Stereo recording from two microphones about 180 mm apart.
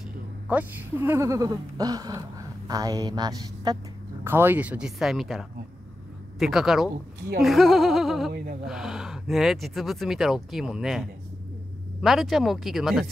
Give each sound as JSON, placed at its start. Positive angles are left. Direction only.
{"t": 0.5, "sound": "speech", "side_deg": -10}
{"t": 7.4, "sound": "a sound", "side_deg": 0}
{"t": 8.3, "sound": "speech", "side_deg": -55}
{"t": 8.6, "sound": "speech", "side_deg": -5}